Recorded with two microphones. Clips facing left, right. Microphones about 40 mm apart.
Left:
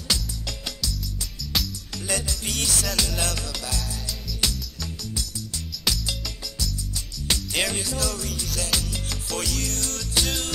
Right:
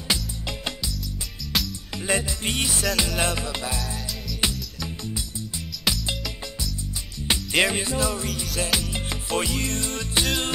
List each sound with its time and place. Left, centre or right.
0.1 s music: right
1.5 s music: centre
2.0 s music: right